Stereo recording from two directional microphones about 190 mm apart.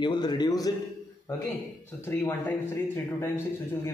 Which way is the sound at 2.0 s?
10° left (ahead or behind).